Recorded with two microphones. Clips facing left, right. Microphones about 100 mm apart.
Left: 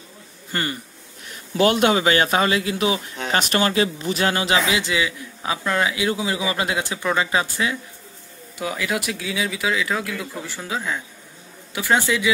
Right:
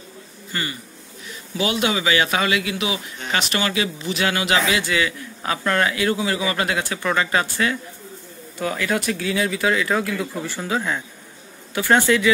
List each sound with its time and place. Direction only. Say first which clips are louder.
0.5 s a man's voice: left 3 dB; 45° left (ahead or behind)
4.6 s a man's voice: right 1 dB; 20° left (ahead or behind)